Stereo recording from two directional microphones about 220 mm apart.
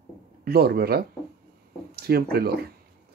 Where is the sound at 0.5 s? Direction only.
45° right (ahead or behind).